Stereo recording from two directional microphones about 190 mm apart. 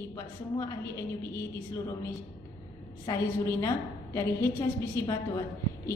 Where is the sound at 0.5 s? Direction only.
15° left (ahead or behind).